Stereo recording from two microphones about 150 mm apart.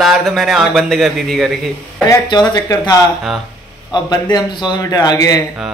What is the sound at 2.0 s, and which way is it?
A man's voice, 25° left (ahead or behind).